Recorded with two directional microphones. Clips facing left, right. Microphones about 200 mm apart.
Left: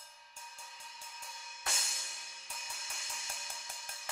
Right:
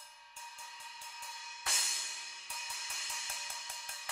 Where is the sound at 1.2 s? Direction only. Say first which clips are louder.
Even; 45° left (ahead or behind).